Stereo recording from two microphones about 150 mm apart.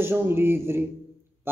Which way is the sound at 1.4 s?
15° right (ahead or behind).